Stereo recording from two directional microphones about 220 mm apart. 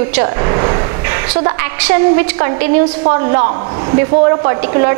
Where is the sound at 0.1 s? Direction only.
15° right (ahead or behind).